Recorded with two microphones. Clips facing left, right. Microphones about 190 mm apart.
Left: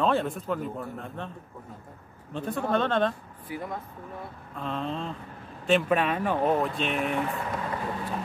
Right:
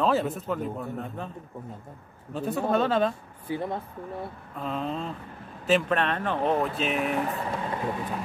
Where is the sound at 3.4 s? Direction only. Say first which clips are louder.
Right 5 dB; 30° right (ahead or behind).